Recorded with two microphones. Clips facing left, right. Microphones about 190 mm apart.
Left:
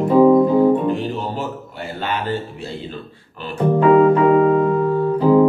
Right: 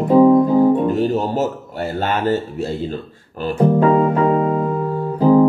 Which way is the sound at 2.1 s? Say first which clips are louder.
Right 4 dB; 45° right (ahead or behind).